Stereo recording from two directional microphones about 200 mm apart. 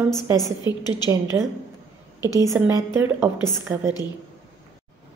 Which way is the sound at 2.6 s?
5° right (ahead or behind).